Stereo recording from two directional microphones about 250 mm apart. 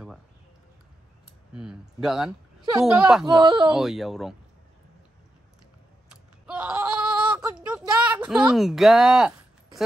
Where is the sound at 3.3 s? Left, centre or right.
Centre.